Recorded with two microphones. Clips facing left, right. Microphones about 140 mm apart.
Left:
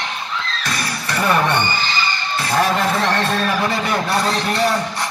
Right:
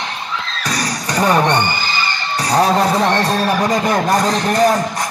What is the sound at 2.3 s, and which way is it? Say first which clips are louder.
Speech: right 4 dB; 40° right (ahead or behind).